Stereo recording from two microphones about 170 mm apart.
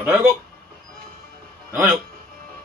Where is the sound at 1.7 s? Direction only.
15° right (ahead or behind).